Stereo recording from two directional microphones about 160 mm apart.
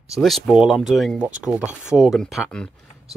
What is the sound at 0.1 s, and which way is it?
Speech, centre (ahead or behind).